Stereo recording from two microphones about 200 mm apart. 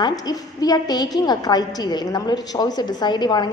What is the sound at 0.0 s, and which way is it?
A woman's voice, 20° left (ahead or behind).